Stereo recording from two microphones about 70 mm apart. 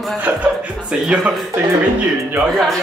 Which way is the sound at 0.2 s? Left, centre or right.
Right.